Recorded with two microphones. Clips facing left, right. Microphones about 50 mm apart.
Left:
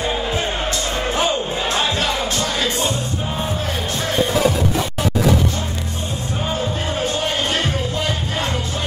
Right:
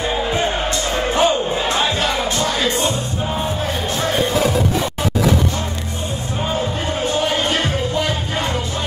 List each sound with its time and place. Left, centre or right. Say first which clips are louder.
0.0 s music: right 2 dB; centre
1.8 s music: right 1 dB; centre